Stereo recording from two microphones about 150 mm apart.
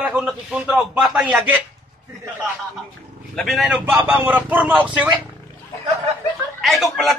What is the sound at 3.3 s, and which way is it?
A man's voice, centre (ahead or behind).